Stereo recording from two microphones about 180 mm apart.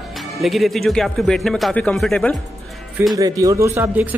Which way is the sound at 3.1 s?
20° right (ahead or behind).